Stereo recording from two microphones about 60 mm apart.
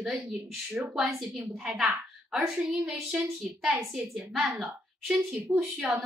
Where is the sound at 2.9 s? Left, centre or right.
Centre.